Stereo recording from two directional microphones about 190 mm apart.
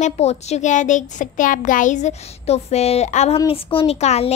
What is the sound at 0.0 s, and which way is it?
Speech, 35° left (ahead or behind).